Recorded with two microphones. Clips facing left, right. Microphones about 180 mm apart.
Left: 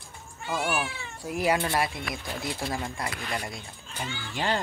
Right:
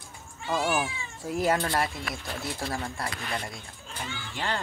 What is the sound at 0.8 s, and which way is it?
Cat, 65° left (ahead or behind).